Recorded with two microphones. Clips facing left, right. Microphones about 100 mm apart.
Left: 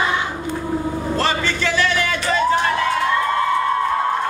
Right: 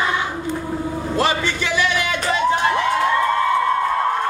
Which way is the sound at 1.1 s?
15° right (ahead or behind).